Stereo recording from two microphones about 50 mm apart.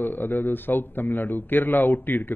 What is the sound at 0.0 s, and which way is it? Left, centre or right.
Speech, left.